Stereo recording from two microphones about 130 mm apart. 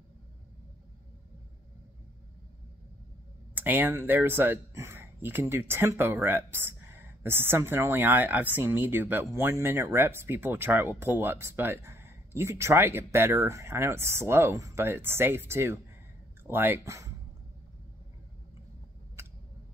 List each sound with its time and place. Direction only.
3.5 s speech: 15° right (ahead or behind)